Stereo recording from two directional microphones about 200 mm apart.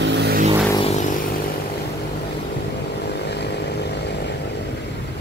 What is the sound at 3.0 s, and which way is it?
Vehicle, 55° left (ahead or behind).